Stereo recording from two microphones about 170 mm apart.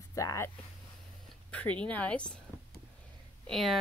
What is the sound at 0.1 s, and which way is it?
Speech, 20° left (ahead or behind).